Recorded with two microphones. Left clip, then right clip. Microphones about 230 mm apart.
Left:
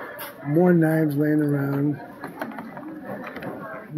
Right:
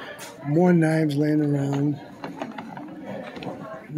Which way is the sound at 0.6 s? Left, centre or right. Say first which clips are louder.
Left 1 dB; centre.